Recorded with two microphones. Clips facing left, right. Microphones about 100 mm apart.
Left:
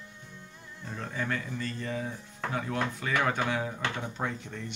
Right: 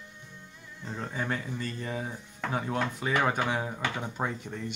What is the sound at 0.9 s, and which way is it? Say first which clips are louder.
Speech: right 1 dB; 20° right (ahead or behind).